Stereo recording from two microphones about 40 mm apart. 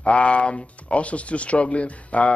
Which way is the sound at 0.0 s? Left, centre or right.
Left.